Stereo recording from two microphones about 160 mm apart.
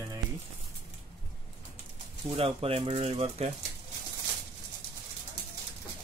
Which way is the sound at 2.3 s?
35° right (ahead or behind).